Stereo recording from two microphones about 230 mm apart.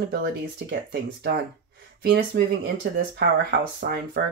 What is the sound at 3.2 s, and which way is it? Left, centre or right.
Speech, right.